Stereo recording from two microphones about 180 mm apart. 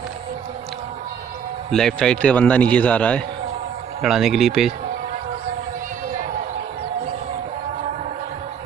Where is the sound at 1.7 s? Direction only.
5° left (ahead or behind).